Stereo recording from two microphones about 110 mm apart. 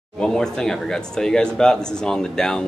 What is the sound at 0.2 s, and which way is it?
Speech, 5° left (ahead or behind).